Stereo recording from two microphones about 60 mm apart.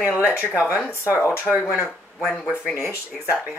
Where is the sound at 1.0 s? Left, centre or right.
Left.